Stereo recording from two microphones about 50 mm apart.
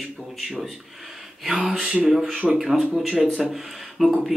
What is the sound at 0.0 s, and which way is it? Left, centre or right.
Speech, centre.